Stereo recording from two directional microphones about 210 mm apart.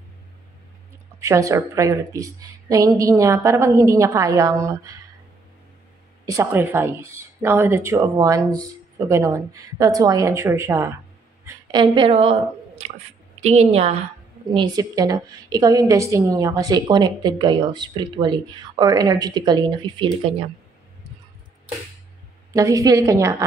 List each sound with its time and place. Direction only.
1.2 s a woman's voice: 15° right (ahead or behind)
6.2 s a woman's voice: 15° right (ahead or behind)
13.4 s a woman's voice: 30° right (ahead or behind)
22.5 s a woman's voice: 15° right (ahead or behind)